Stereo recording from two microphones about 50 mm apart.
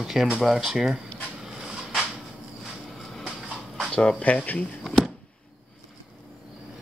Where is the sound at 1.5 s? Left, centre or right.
Centre.